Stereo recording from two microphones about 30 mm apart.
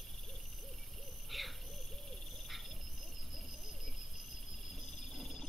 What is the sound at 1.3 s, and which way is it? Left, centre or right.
Hoot, centre.